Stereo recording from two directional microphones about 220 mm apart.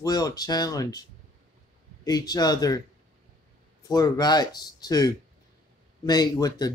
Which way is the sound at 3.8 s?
15° left (ahead or behind).